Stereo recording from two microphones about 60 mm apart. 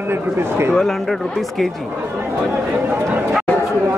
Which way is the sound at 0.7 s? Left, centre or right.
Centre.